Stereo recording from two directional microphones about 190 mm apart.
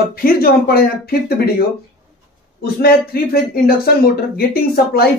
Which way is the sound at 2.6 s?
55° left (ahead or behind).